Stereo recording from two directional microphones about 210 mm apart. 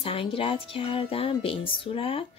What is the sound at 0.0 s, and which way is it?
Speech, 25° left (ahead or behind).